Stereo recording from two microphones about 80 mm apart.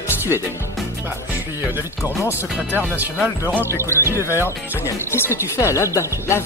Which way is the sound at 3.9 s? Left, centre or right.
Left.